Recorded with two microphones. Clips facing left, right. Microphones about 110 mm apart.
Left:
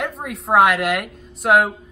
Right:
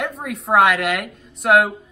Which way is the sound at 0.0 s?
Centre (ahead or behind).